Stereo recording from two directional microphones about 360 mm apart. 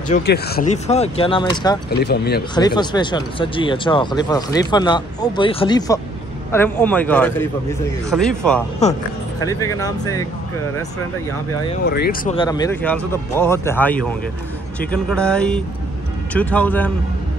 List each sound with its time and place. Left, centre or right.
0.1 s speech: left
1.9 s speech: left
2.5 s a man's voice: centre
11.8 s a man's voice: left; by 16.9 s centre